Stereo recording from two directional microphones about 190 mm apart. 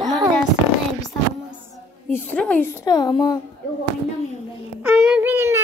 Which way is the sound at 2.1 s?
5° left (ahead or behind).